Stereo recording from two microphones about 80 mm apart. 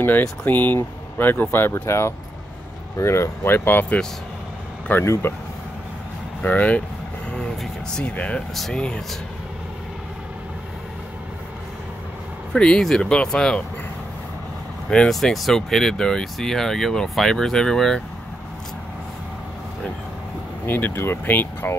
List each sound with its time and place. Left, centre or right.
0.5 s speech: left
5.0 s speech: left
6.4 s speech: centre
12.5 s speech: centre
14.9 s speech: centre
20.6 s speech: left